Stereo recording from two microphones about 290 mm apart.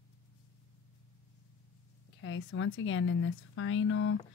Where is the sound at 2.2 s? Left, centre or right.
Left.